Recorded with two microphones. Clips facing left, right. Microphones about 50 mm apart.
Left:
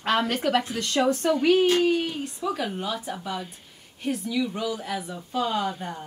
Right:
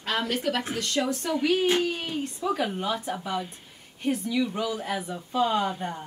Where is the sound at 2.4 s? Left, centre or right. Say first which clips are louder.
Right 1 dB; centre.